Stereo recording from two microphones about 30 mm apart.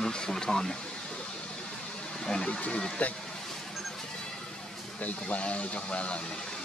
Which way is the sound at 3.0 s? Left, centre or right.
Left.